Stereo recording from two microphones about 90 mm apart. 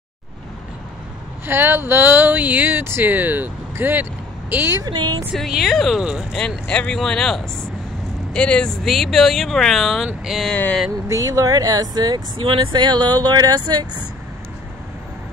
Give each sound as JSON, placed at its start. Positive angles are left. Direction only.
{"t": 1.4, "sound": "speech", "side_deg": -25}
{"t": 4.8, "sound": "speech", "side_deg": -55}
{"t": 5.3, "sound": "speech", "side_deg": 0}
{"t": 6.3, "sound": "speech", "side_deg": 10}
{"t": 10.5, "sound": "speech", "side_deg": 15}
{"t": 11.1, "sound": "speech", "side_deg": -40}
{"t": 12.4, "sound": "speech", "side_deg": -60}